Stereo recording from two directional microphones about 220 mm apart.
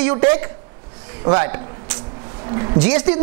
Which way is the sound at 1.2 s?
20° right (ahead or behind).